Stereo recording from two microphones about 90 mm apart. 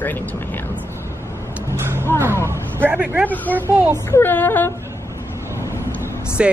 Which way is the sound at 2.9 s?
15° right (ahead or behind).